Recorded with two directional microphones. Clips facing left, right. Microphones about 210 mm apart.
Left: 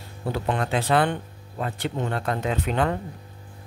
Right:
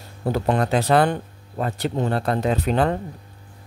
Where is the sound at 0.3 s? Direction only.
40° right (ahead or behind).